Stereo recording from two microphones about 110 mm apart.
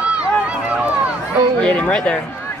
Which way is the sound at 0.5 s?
10° right (ahead or behind).